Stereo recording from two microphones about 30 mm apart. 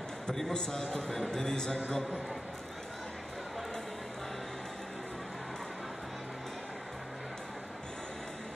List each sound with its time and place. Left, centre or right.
0.3 s a man's voice: left